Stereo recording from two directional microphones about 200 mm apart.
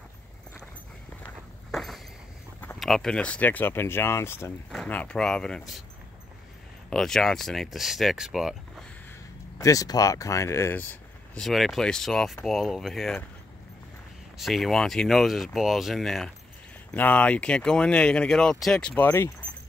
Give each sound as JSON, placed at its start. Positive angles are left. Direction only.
{"t": 1.2, "sound": "walk", "side_deg": 0}
{"t": 2.6, "sound": "speech", "side_deg": 5}
{"t": 6.9, "sound": "speech", "side_deg": 0}
{"t": 9.6, "sound": "speech", "side_deg": 15}
{"t": 14.4, "sound": "speech", "side_deg": 0}